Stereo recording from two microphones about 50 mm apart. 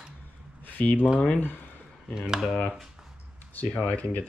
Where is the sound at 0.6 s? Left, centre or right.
Left.